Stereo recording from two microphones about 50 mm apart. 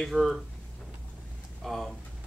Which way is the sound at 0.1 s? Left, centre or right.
Centre.